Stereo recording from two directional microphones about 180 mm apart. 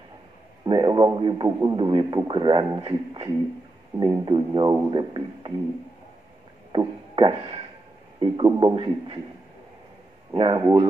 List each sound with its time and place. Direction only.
0.7 s a man's voice: 25° right (ahead or behind)
6.7 s music: 25° right (ahead or behind)
8.2 s a man's voice: 25° right (ahead or behind)
10.3 s a man's voice: 25° right (ahead or behind)